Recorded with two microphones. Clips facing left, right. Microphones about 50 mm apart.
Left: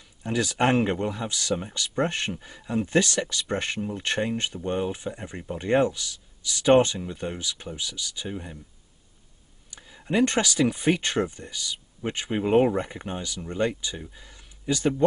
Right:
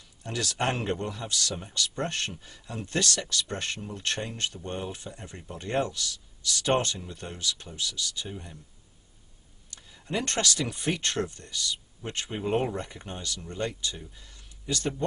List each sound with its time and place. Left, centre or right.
0.2 s speech: centre
9.7 s speech: centre